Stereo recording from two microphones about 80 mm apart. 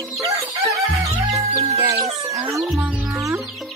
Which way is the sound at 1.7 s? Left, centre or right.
Right.